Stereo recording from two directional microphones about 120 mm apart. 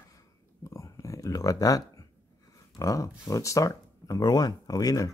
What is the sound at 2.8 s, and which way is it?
Speech, 30° left (ahead or behind).